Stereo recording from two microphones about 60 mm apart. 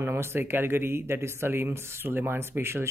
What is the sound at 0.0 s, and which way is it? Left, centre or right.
Speech, right.